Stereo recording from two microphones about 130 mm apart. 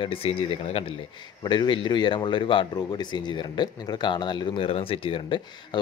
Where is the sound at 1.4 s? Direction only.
35° left (ahead or behind).